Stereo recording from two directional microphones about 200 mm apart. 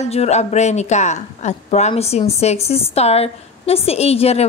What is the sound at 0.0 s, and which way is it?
A woman's voice, 35° left (ahead or behind).